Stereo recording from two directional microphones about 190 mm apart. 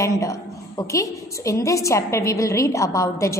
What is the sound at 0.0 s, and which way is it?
A woman's voice, 15° left (ahead or behind).